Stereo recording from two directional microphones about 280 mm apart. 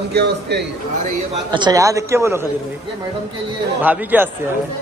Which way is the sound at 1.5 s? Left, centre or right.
Centre.